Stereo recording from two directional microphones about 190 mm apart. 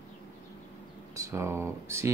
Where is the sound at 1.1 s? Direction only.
15° right (ahead or behind).